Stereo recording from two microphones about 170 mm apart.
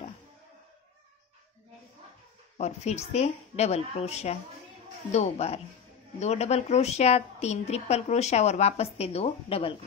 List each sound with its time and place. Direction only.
2.5 s a woman's voice: 40° left (ahead or behind)